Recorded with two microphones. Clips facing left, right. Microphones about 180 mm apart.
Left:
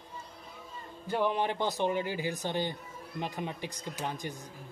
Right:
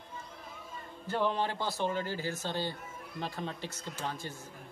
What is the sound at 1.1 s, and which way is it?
Speech, 15° left (ahead or behind).